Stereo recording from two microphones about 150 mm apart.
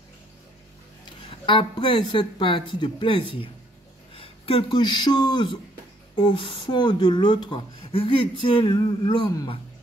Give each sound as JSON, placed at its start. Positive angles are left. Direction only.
{"t": 1.4, "sound": "speech", "side_deg": 35}